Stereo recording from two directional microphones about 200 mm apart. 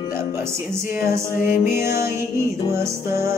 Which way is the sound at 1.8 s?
15° right (ahead or behind).